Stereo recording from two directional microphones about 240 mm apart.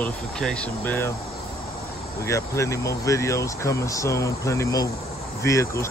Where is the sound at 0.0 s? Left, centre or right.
Centre.